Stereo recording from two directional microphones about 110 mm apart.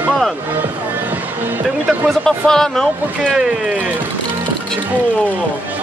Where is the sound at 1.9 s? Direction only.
Centre (ahead or behind).